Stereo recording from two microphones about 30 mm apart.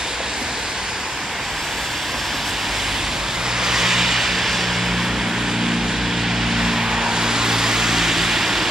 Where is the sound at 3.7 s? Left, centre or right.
Centre.